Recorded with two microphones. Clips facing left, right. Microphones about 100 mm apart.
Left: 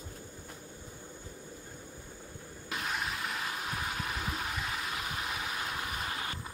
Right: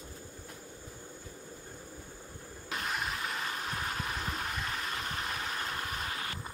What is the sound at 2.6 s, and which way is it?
Vehicle, centre (ahead or behind).